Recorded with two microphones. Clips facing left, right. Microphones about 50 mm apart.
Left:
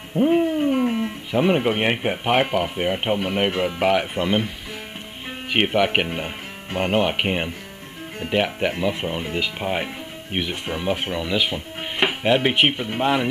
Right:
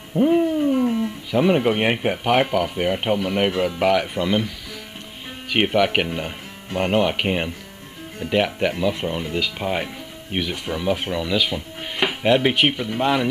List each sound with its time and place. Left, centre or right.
0.3 s speech: centre
5.5 s speech: centre